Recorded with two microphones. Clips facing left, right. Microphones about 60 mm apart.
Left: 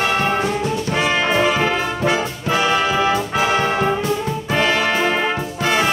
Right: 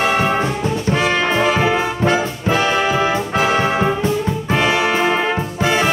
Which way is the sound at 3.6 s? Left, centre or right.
Centre.